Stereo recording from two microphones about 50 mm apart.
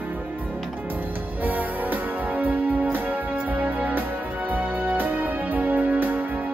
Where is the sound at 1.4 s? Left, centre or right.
Right.